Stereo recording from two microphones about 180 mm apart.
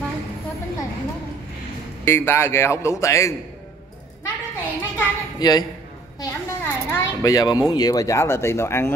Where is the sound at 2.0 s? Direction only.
15° left (ahead or behind).